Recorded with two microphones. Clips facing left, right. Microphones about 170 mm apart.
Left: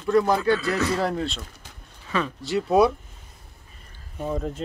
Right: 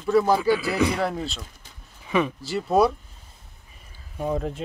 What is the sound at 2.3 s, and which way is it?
Speech, centre (ahead or behind).